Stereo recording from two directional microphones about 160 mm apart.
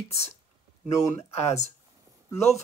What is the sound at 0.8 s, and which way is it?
Speech, 20° left (ahead or behind).